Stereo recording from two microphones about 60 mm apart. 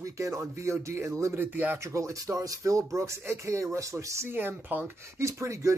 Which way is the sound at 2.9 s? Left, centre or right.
Right.